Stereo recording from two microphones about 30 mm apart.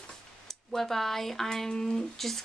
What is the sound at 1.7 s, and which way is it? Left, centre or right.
Speech, left.